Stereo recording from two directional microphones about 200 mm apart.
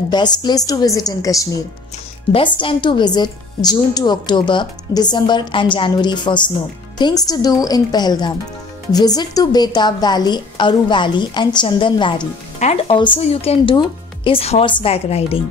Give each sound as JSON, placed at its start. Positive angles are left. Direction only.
{"t": 0.1, "sound": "a woman's voice", "side_deg": 20}